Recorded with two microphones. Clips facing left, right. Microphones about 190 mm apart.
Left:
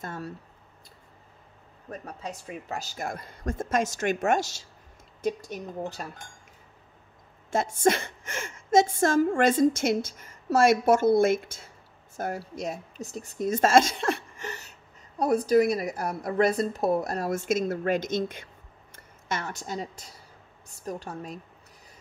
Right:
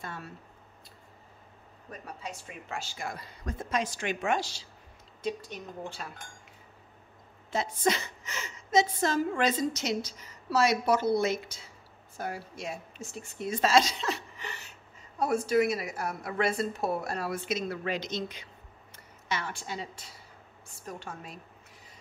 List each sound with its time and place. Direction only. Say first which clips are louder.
0.0 s a woman's voice: left 5 dB; 45° left (ahead or behind)
1.9 s a woman's voice: left 4 dB; 40° left (ahead or behind)
6.0 s a woman's voice: left 4 dB; 45° left (ahead or behind)
7.5 s a woman's voice: left 5 dB; 50° left (ahead or behind)